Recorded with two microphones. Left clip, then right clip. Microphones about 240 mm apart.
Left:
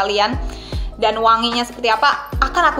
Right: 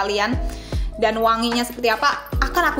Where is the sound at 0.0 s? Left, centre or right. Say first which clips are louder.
Left 4 dB; right.